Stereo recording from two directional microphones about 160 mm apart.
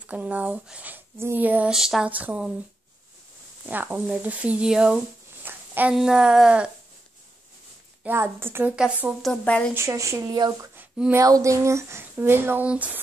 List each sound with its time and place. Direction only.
0.0 s speech: 10° right (ahead or behind)
3.6 s speech: 10° right (ahead or behind)
8.0 s speech: 15° right (ahead or behind); by 9.7 s 10° left (ahead or behind)
9.8 s speech: 20° right (ahead or behind)
10.8 s speech: 10° right (ahead or behind)